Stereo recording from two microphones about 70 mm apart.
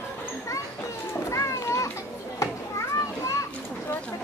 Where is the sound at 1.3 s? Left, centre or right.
Left.